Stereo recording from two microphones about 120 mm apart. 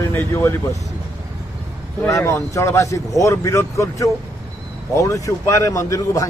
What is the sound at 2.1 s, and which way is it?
Speech, 25° left (ahead or behind).